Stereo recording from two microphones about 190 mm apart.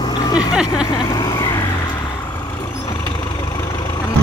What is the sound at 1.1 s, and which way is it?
Vehicle, 20° left (ahead or behind).